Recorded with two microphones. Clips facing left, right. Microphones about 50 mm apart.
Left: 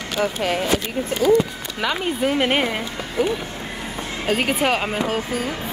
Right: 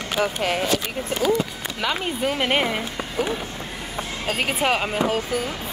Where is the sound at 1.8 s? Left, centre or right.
Centre.